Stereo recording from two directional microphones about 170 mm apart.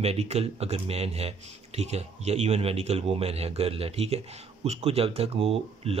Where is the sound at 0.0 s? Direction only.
40° right (ahead or behind).